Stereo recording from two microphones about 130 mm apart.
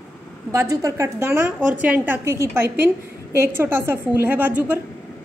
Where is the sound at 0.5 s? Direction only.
25° right (ahead or behind).